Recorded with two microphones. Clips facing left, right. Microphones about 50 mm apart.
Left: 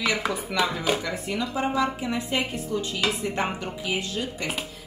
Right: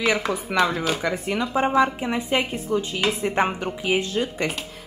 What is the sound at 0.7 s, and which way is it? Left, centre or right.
Speech, centre.